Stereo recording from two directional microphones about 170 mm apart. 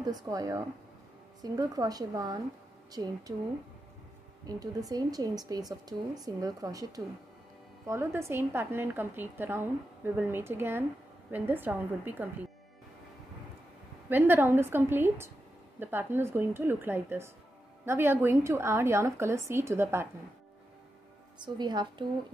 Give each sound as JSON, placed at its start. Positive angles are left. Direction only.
{"t": 0.0, "sound": "a woman's voice", "side_deg": -20}
{"t": 4.5, "sound": "a woman's voice", "side_deg": -20}
{"t": 14.0, "sound": "a woman's voice", "side_deg": -10}
{"t": 21.4, "sound": "a woman's voice", "side_deg": -25}